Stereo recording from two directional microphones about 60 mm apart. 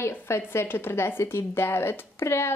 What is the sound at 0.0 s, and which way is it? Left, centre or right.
A woman's voice, left.